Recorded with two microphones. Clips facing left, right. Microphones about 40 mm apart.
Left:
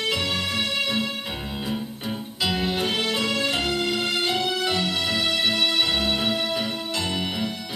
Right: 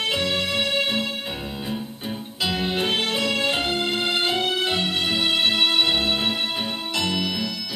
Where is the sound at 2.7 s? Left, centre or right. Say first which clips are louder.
Right 1 dB; right.